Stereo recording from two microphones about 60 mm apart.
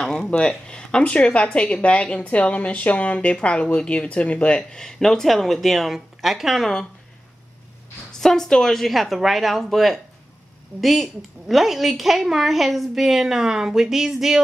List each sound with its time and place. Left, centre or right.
0.0 s speech: centre
4.6 s a woman's voice: centre
8.2 s a woman's voice: centre